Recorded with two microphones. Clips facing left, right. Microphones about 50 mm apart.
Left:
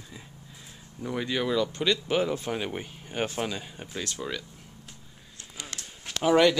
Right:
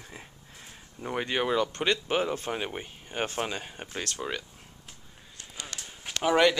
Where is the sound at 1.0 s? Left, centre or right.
Right.